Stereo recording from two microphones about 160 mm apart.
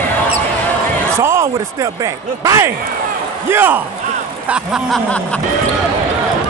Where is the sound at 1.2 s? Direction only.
15° right (ahead or behind).